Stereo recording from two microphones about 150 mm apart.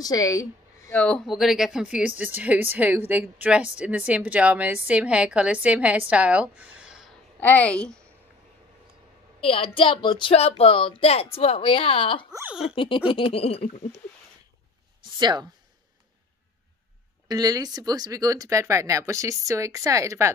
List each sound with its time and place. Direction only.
0.0 s speech: 25° left (ahead or behind)
0.9 s a woman's voice: 5° left (ahead or behind)
7.3 s a woman's voice: 10° left (ahead or behind)
9.4 s speech: 40° left (ahead or behind)
12.4 s a woman's voice: 5° right (ahead or behind)
12.7 s speech: 35° left (ahead or behind)
15.1 s speech: 30° right (ahead or behind)
17.3 s speech: 25° right (ahead or behind)